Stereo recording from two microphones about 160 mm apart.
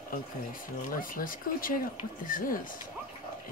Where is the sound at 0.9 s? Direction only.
60° left (ahead or behind).